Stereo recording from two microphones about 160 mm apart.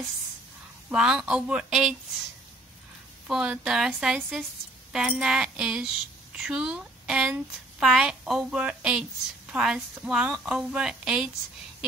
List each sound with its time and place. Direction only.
0.8 s a woman's voice: 5° right (ahead or behind)
3.3 s a woman's voice: 5° right (ahead or behind)